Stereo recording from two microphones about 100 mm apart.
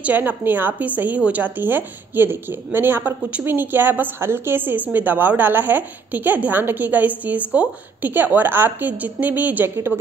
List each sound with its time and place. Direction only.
0.0 s speech: 15° right (ahead or behind)